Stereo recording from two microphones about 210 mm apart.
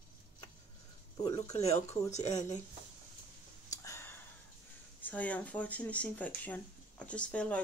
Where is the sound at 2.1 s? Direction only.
35° left (ahead or behind).